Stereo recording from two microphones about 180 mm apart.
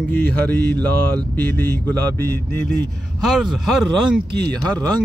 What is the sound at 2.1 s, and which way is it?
Speech, 60° right (ahead or behind).